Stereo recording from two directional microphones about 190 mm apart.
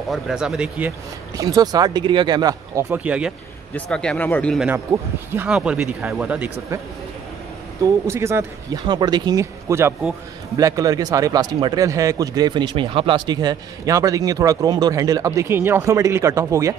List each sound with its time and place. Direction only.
0.1 s speech: 5° right (ahead or behind)
3.7 s speech: 5° left (ahead or behind)
5.3 s speech: 10° right (ahead or behind)
7.8 s speech: 15° right (ahead or behind)